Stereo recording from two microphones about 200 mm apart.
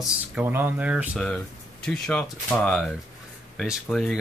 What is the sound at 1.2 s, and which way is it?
Speech, 5° left (ahead or behind).